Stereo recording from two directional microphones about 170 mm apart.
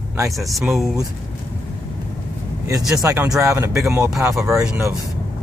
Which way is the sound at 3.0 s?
20° right (ahead or behind).